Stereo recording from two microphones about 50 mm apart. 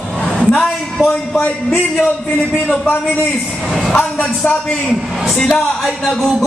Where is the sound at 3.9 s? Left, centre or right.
Centre.